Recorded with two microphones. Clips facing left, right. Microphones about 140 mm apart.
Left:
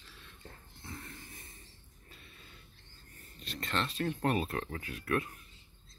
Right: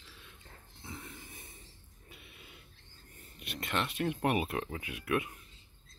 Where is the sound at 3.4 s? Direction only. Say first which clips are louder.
Right 1 dB; 10° right (ahead or behind).